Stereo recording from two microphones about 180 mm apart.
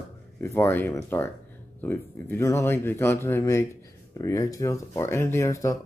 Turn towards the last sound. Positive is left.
turn(degrees=20)  # may be behind; listen again after turning